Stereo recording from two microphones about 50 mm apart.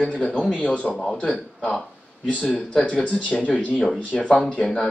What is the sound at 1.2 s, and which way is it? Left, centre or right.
A man's voice, centre.